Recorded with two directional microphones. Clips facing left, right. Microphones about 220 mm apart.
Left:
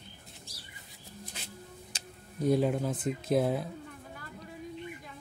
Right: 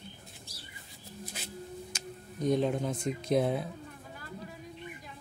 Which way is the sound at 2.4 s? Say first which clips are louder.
Left 1 dB; 5° left (ahead or behind).